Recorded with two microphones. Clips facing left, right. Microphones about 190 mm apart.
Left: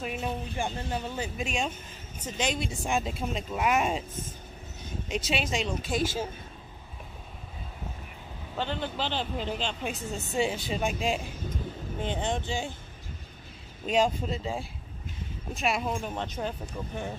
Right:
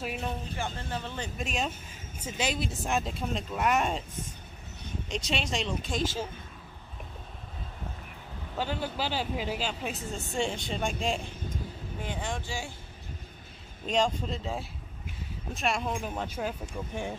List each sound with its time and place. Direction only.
0.0 s speech: centre (ahead or behind)
0.6 s speech: 15° left (ahead or behind)
5.0 s speech: 5° left (ahead or behind)
8.5 s speech: 5° right (ahead or behind)
12.0 s speech: 20° left (ahead or behind)
13.8 s speech: 5° left (ahead or behind)